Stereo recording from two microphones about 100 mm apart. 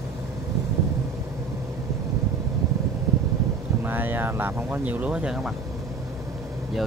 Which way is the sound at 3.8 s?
20° right (ahead or behind).